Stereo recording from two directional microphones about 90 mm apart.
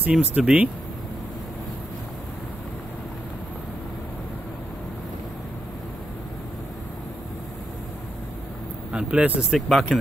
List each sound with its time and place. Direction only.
0.0 s speech: 15° right (ahead or behind)
8.9 s speech: 15° right (ahead or behind)
9.5 s speech: centre (ahead or behind)